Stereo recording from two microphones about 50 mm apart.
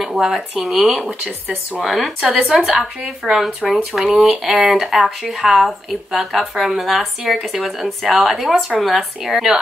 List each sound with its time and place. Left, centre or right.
0.0 s speech: centre
1.8 s speech: centre
2.2 s speech: centre
2.6 s speech: centre